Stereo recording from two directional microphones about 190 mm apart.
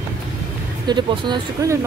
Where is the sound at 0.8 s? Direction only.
25° right (ahead or behind).